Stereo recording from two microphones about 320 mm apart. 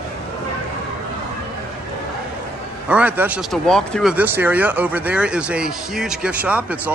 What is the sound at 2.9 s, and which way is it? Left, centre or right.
Speech, centre.